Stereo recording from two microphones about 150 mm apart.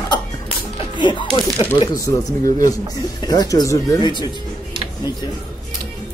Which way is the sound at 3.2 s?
25° left (ahead or behind).